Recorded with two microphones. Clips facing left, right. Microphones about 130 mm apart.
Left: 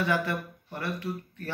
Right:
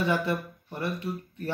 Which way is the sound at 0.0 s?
25° right (ahead or behind).